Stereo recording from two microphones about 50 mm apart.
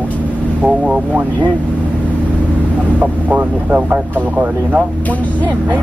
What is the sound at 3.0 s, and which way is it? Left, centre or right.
Speech, right.